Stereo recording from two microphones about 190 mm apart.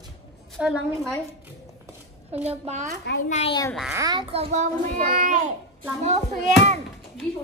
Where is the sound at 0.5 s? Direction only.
Centre (ahead or behind).